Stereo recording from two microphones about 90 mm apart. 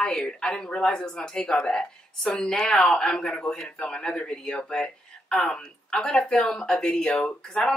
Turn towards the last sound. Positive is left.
turn(degrees=10)  # may be behind; listen again after turning